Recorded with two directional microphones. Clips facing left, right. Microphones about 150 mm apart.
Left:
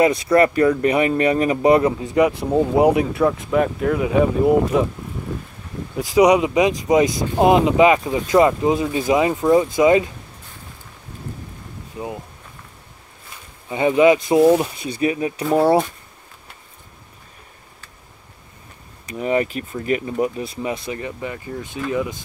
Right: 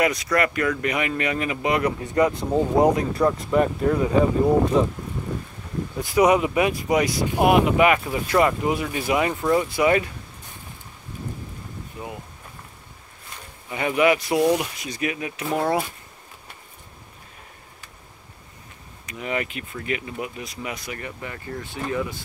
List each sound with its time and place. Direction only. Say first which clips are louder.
0.0 s speech: left 7 dB; 25° left (ahead or behind)
2.0 s speech: left 3 dB; 10° left (ahead or behind)
6.1 s speech: left 4 dB; 15° left (ahead or behind)
12.0 s speech: left 6 dB; 20° left (ahead or behind)
13.7 s speech: left 6 dB; 25° left (ahead or behind)
19.0 s speech: left 8 dB; 35° left (ahead or behind); by 22.2 s 20° left (ahead or behind)